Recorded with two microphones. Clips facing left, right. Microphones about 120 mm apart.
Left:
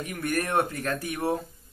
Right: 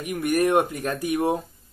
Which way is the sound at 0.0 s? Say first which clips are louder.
Right 7 dB; 15° right (ahead or behind).